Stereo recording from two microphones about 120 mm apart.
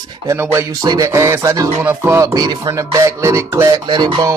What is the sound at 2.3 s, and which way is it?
Speech, 35° right (ahead or behind).